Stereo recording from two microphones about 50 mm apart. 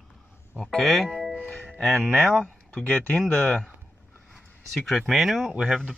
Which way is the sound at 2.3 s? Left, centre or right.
Left.